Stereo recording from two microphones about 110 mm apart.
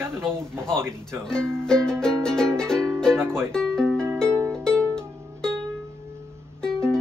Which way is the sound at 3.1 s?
20° right (ahead or behind).